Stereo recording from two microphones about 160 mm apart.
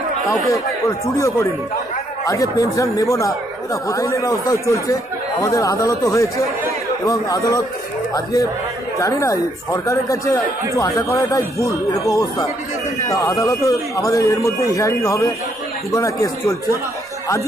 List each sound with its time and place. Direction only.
0.5 s speech: 20° left (ahead or behind)